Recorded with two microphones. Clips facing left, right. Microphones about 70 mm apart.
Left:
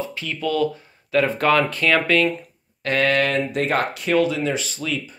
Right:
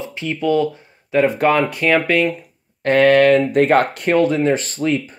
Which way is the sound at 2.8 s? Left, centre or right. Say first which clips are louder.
Right 8 dB; right.